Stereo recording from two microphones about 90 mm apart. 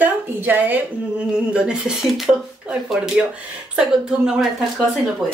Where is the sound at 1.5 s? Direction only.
10° right (ahead or behind).